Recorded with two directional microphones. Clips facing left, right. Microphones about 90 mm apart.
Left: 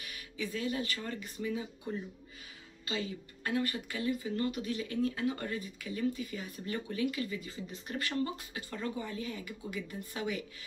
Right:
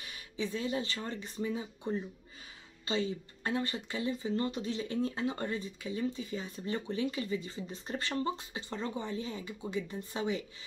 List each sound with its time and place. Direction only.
0.0 s speech: 30° right (ahead or behind)